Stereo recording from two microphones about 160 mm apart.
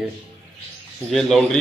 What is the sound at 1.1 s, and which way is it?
Speech, centre (ahead or behind).